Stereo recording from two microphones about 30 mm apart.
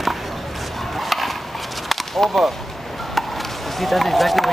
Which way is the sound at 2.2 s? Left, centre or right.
Centre.